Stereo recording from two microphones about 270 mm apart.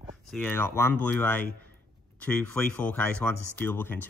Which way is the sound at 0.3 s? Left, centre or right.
Centre.